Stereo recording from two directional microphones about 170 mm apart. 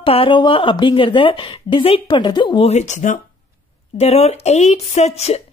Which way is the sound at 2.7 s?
45° left (ahead or behind).